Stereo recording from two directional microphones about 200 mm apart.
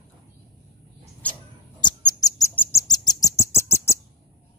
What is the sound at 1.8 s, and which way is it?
Bird, 20° left (ahead or behind).